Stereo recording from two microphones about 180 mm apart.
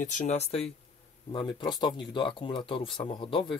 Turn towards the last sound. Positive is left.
turn(degrees=30)  # may be behind; listen again after turning